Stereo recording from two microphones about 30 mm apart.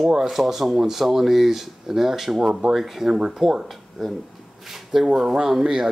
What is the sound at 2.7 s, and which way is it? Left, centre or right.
Speech, centre.